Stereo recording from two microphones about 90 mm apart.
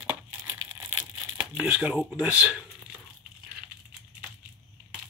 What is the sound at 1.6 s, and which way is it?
Speech, 15° right (ahead or behind).